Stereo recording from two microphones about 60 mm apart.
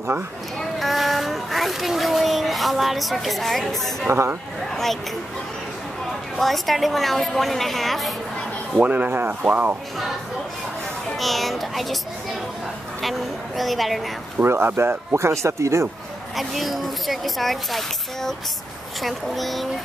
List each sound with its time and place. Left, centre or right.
0.6 s speech: centre
6.3 s speech: centre
8.8 s speech: right
11.1 s speech: centre
13.6 s speech: centre
14.4 s speech: right
15.4 s speech: right
16.3 s speech: centre